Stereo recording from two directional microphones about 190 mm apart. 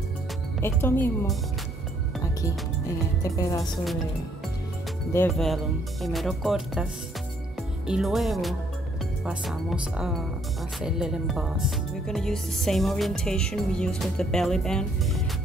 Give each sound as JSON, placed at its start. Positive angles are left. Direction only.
{"t": 0.6, "sound": "speech", "side_deg": 10}
{"t": 3.3, "sound": "speech", "side_deg": 15}
{"t": 5.3, "sound": "speech", "side_deg": 0}